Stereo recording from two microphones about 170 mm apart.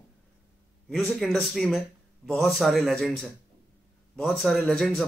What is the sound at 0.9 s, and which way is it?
Speech, centre (ahead or behind).